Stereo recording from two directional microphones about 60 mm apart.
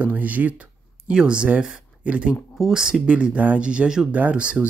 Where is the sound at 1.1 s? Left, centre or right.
Centre.